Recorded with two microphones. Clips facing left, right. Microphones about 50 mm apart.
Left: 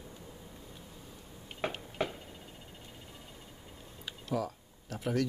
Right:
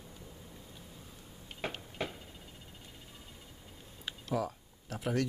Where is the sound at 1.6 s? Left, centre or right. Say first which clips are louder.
Left 4 dB; centre.